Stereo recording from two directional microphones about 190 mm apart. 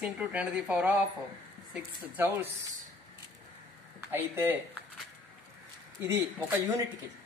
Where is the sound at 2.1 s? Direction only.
10° right (ahead or behind).